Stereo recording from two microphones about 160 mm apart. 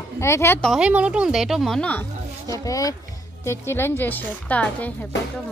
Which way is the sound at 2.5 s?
20° left (ahead or behind).